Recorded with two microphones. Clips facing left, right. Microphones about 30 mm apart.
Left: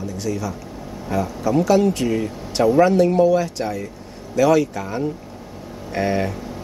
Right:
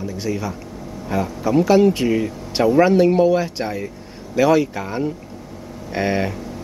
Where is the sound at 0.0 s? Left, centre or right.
Centre.